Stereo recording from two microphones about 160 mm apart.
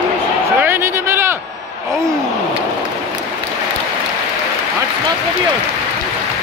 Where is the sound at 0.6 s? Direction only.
15° right (ahead or behind).